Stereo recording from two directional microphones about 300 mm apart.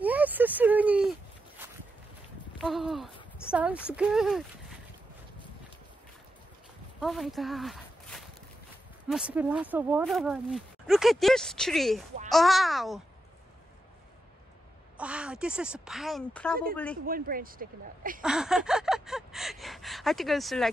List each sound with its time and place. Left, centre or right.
0.0 s a sound: centre
3.9 s speech: centre
7.0 s walk: centre
9.1 s speech: centre
15.0 s speech: centre
17.0 s speech: right
18.2 s gasp: centre